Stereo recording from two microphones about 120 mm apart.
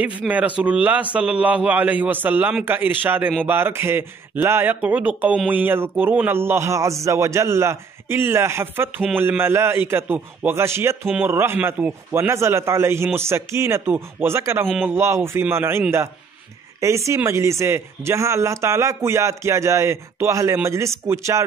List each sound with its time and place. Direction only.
0.3 s a man's voice: 10° right (ahead or behind)
16.8 s speech: 25° right (ahead or behind)